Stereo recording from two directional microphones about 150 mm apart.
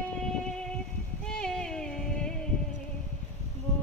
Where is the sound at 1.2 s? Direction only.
5° left (ahead or behind).